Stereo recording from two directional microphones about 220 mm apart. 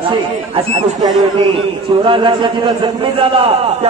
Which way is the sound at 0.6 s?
25° right (ahead or behind).